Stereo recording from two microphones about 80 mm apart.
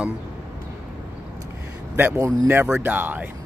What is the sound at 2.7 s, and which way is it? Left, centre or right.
Speech, right.